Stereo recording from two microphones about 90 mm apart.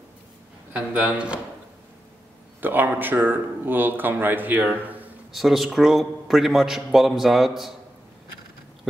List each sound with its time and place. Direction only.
0.7 s a man's voice: 15° right (ahead or behind)
2.6 s speech: 20° right (ahead or behind)
5.3 s a man's voice: centre (ahead or behind)